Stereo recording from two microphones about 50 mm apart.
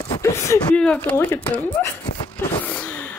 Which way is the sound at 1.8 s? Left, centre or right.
Left.